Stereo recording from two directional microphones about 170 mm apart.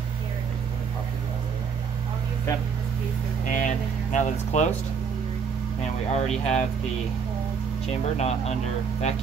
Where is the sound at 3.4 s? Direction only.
50° left (ahead or behind).